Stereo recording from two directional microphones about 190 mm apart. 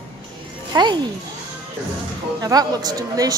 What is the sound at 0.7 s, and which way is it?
Speech, 20° right (ahead or behind).